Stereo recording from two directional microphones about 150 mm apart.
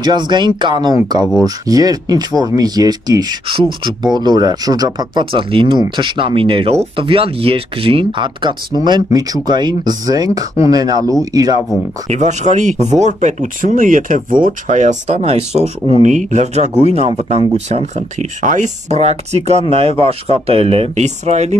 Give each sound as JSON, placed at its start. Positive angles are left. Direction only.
{"t": 0.0, "sound": "speech", "side_deg": -30}
{"t": 12.1, "sound": "speech", "side_deg": -50}